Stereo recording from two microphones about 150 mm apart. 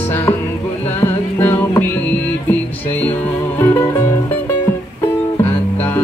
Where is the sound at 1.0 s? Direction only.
15° left (ahead or behind).